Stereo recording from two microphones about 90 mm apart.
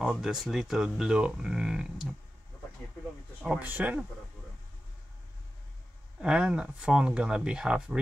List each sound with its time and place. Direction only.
0.1 s speech: 5° right (ahead or behind)
3.4 s speech: 20° right (ahead or behind)
6.2 s speech: 10° right (ahead or behind)